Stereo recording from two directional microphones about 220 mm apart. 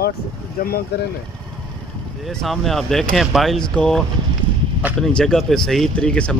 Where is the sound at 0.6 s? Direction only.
40° left (ahead or behind).